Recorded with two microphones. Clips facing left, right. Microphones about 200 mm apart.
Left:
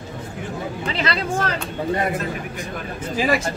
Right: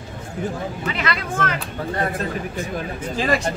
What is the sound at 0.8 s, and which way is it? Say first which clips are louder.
Speech: left 3 dB; 30° left (ahead or behind).